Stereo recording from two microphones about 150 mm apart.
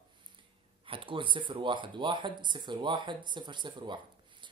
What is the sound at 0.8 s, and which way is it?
Speech, 35° right (ahead or behind).